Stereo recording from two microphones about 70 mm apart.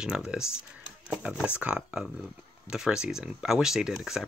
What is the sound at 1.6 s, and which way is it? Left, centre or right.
Speech, right.